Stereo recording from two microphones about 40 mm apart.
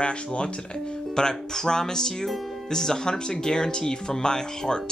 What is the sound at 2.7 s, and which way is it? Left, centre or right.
Speech, centre.